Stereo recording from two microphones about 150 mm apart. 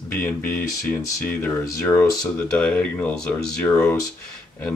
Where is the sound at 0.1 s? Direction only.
15° left (ahead or behind).